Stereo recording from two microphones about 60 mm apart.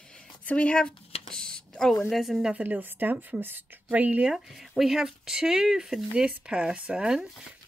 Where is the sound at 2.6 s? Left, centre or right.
Right.